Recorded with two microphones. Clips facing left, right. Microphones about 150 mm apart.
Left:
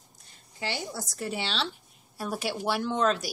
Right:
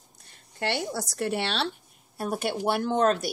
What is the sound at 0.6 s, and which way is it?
A woman's voice, 65° right (ahead or behind).